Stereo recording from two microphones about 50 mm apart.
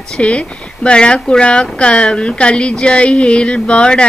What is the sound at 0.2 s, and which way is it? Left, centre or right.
Speech, left.